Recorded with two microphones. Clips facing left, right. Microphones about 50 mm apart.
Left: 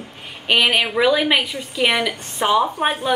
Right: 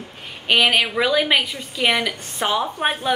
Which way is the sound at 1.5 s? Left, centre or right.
Centre.